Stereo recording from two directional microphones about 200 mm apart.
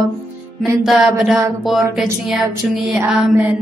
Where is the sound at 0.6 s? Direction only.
Centre (ahead or behind).